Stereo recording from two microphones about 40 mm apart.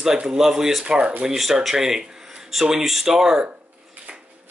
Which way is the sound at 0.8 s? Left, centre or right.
Right.